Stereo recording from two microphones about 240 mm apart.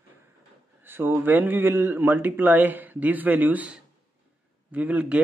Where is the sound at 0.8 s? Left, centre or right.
Centre.